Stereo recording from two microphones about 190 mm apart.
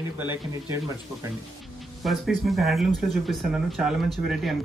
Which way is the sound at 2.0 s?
Centre (ahead or behind).